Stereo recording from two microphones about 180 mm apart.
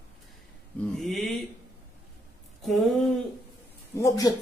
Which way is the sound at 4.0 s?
20° left (ahead or behind).